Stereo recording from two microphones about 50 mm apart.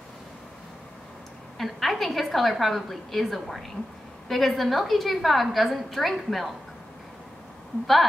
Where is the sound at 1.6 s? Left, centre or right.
Centre.